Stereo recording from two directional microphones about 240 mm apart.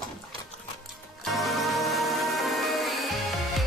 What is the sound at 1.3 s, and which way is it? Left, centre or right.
Music, centre.